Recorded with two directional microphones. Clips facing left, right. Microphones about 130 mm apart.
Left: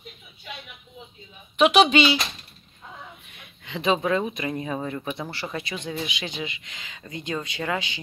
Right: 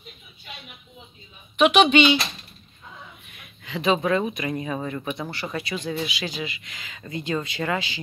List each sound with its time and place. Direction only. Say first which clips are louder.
1.6 s speech: right 1 dB; 35° left (ahead or behind)
3.3 s a sound: right 2 dB; 25° left (ahead or behind)
4.3 s speech: right 1 dB; 25° left (ahead or behind)